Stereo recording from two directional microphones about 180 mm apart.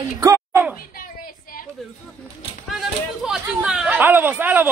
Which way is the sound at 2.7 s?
Centre (ahead or behind).